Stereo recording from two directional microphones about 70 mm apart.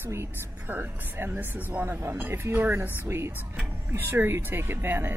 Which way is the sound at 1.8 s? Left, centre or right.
Right.